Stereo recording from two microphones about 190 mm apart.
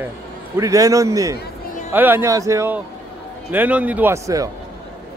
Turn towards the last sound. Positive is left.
turn(degrees=-15)  # may be behind; listen again after turning